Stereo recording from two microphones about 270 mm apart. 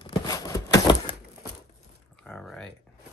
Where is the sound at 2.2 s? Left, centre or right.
Centre.